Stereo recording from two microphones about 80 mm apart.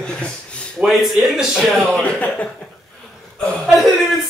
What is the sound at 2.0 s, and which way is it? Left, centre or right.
Speech, centre.